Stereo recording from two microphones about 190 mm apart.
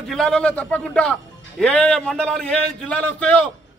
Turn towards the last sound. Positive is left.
turn(degrees=5)  # may be behind; listen again after turning